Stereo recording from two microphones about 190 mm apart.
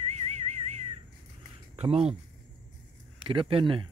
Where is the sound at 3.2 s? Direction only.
25° right (ahead or behind).